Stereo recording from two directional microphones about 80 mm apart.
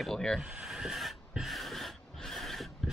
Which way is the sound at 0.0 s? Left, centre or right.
Centre.